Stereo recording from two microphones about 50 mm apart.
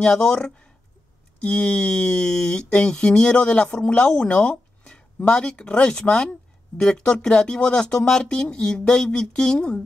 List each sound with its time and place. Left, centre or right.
0.0 s speech: centre